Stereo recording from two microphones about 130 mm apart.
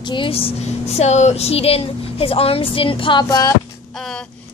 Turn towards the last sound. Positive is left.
turn(degrees=25)  # may be behind; listen again after turning